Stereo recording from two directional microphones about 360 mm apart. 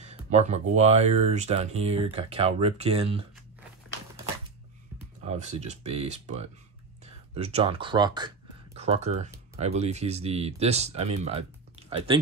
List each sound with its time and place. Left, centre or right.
0.0 s speech: centre
5.2 s speech: centre
7.3 s speech: centre